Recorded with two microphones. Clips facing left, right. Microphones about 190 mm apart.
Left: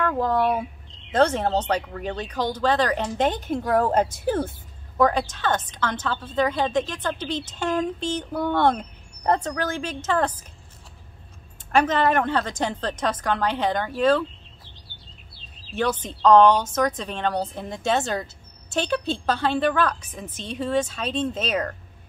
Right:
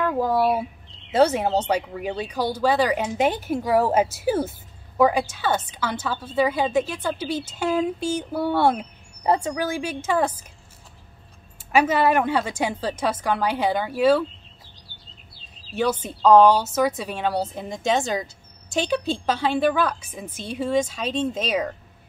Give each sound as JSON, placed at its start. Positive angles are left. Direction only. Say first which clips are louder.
{"t": 0.0, "sound": "speech", "louder": "right 1 dB", "side_deg": -10}
{"t": 11.7, "sound": "speech", "louder": "right 1 dB", "side_deg": -10}
{"t": 15.7, "sound": "speech", "louder": "right 1 dB", "side_deg": -10}